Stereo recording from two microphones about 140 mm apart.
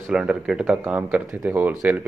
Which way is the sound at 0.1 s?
5° right (ahead or behind).